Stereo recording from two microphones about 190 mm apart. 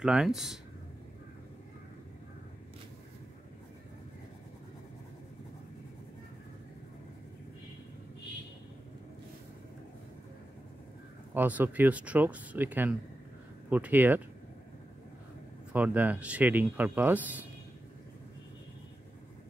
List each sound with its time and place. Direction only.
0.0 s speech: 5° right (ahead or behind)
11.3 s speech: 10° right (ahead or behind)
15.7 s speech: 10° right (ahead or behind)